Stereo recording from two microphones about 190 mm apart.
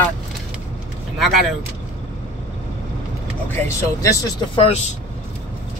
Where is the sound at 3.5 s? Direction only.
10° left (ahead or behind).